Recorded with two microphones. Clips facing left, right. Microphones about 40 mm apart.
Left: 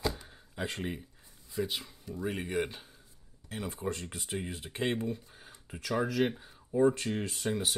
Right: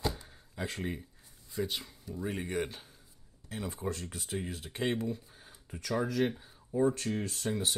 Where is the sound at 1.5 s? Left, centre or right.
Centre.